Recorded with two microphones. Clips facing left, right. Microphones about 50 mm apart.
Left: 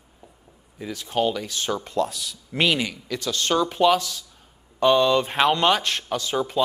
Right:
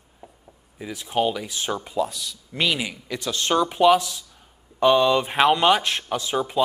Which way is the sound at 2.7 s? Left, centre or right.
Centre.